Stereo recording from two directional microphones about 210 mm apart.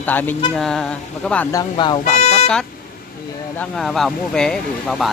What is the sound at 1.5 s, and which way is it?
Speech, 20° left (ahead or behind).